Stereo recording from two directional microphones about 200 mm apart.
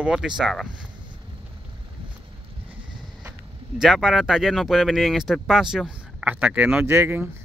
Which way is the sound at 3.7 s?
Centre (ahead or behind).